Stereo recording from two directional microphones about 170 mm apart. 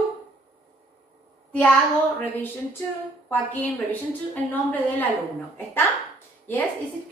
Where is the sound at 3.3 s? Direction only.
10° left (ahead or behind).